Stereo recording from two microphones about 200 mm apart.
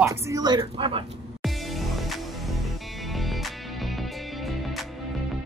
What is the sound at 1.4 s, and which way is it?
Music, centre (ahead or behind).